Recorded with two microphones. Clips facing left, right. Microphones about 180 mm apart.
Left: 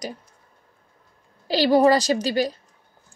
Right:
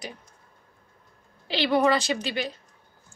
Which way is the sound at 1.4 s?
40° left (ahead or behind).